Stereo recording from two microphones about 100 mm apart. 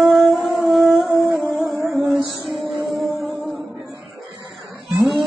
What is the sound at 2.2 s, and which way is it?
Music, centre (ahead or behind).